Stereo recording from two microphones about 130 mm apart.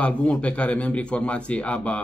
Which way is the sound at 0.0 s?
10° left (ahead or behind).